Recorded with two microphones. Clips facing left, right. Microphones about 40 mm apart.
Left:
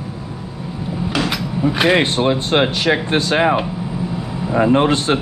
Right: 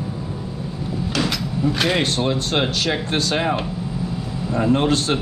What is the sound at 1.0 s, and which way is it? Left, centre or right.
Speech, centre.